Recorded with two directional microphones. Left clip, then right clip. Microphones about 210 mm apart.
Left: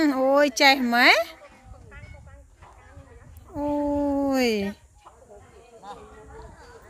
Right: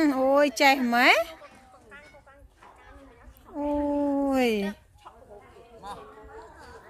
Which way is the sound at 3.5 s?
15° left (ahead or behind).